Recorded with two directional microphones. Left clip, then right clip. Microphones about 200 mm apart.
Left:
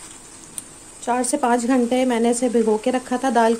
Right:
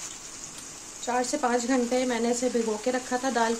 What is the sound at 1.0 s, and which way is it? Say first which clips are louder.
Speech: left 6 dB; 45° left (ahead or behind).